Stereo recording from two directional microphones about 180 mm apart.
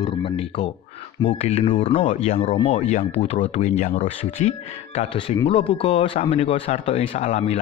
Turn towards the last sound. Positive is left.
turn(degrees=35)  # may be behind; listen again after turning